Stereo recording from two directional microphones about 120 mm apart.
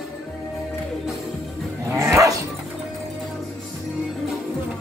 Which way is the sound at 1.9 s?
25° right (ahead or behind).